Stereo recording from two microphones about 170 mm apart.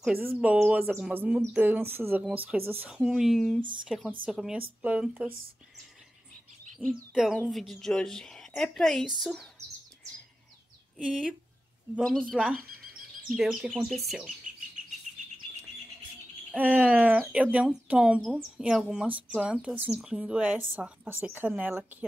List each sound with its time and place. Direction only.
0.0 s speech: 10° right (ahead or behind)
3.0 s speech: centre (ahead or behind)
6.8 s speech: 10° right (ahead or behind)
7.3 s speech: 5° left (ahead or behind)
11.0 s speech: 5° right (ahead or behind)
15.1 s chirp: 45° right (ahead or behind)
16.5 s speech: 10° right (ahead or behind)